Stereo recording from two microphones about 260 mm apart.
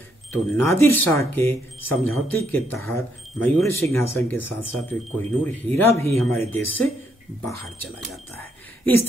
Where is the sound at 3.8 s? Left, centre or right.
Right.